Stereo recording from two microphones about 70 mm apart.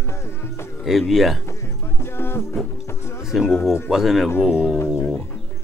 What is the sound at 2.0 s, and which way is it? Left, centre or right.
Music, left.